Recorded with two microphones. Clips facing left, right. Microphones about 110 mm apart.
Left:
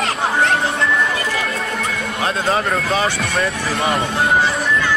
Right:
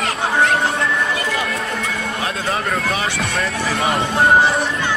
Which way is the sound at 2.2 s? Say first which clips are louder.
Left 6 dB; 30° left (ahead or behind).